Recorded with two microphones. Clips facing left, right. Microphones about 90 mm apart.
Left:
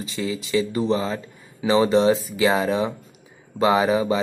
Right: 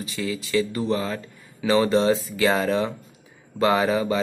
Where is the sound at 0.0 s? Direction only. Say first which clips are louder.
Left 1 dB; 25° left (ahead or behind).